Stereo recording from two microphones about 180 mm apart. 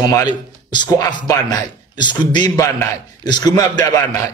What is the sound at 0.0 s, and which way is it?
Speech, 20° left (ahead or behind).